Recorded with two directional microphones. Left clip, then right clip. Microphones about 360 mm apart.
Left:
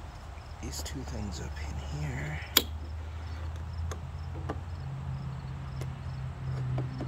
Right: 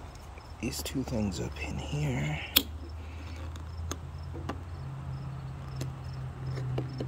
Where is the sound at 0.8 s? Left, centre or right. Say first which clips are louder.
Right 8 dB; right.